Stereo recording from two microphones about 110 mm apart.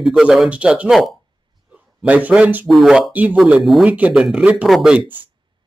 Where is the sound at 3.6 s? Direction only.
Centre (ahead or behind).